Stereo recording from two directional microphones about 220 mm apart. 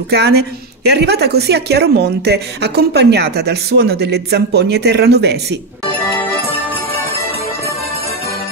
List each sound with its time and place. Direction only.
0.1 s a woman's voice: 45° right (ahead or behind)